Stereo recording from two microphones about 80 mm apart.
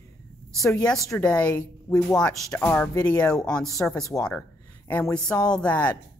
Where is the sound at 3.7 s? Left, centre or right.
Left.